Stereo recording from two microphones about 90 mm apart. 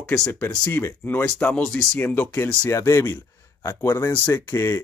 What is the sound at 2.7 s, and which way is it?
Speech, 30° left (ahead or behind).